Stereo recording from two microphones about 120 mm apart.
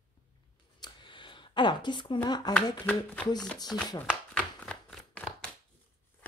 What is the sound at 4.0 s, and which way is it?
Shuffling cards, 10° left (ahead or behind).